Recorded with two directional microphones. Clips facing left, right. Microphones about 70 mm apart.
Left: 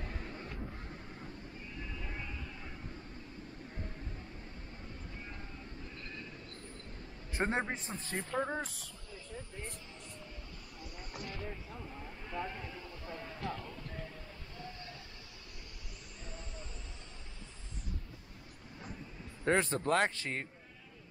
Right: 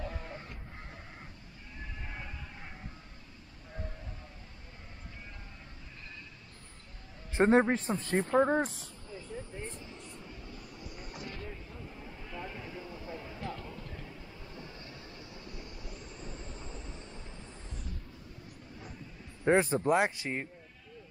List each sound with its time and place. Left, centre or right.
0.0 s vehicle: right
7.3 s speech: right
7.7 s speech: right
8.2 s speech: right
11.2 s a sound: centre
12.4 s vehicle: centre
19.4 s speech: centre